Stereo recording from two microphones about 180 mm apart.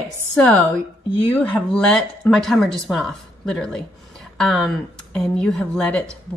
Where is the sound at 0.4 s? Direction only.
5° left (ahead or behind).